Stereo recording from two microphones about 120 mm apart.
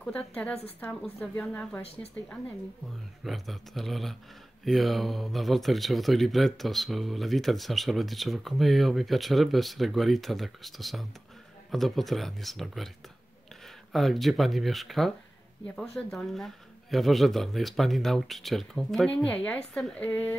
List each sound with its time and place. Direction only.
0.0 s speech: 10° left (ahead or behind)
2.0 s speech: 25° left (ahead or behind)
3.3 s speech: centre (ahead or behind)
13.9 s speech: centre (ahead or behind)